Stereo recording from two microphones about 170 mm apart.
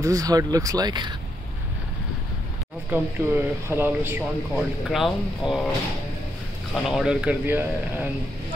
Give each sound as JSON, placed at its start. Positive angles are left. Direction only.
{"t": 0.0, "sound": "speech", "side_deg": -20}
{"t": 2.9, "sound": "speech", "side_deg": -15}
{"t": 4.6, "sound": "a man's voice", "side_deg": 0}
{"t": 6.7, "sound": "a man's voice", "side_deg": 0}